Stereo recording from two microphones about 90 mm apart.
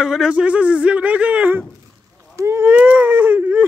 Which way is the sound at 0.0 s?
5° right (ahead or behind).